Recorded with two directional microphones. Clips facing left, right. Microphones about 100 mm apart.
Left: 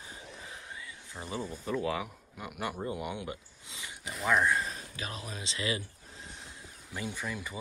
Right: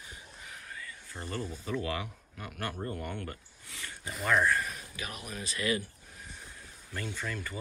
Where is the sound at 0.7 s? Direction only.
15° left (ahead or behind).